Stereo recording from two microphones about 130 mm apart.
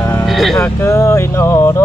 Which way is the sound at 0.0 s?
15° left (ahead or behind).